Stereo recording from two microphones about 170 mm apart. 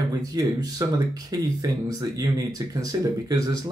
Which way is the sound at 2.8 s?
20° right (ahead or behind).